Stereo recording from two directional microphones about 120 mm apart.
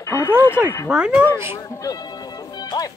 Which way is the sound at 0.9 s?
10° right (ahead or behind).